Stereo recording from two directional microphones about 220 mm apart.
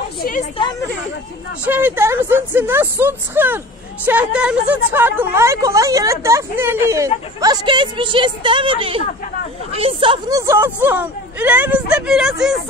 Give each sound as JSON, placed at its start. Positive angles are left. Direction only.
{"t": 0.2, "sound": "speech", "side_deg": 40}
{"t": 1.7, "sound": "speech", "side_deg": -10}